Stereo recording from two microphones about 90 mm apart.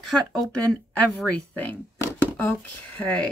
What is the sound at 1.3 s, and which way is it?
Speech, 20° left (ahead or behind).